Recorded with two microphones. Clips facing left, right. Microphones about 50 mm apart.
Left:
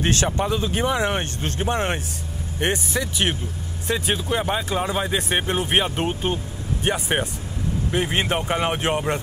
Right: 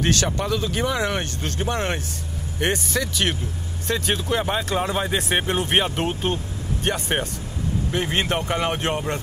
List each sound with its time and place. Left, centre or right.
0.0 s speech: left